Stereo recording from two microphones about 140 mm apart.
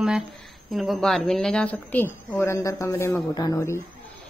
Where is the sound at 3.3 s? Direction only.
30° left (ahead or behind).